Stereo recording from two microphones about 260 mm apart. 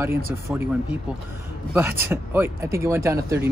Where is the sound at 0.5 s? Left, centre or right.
Centre.